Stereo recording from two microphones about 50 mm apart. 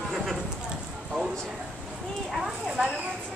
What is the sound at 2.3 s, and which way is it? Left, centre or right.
Speech, centre.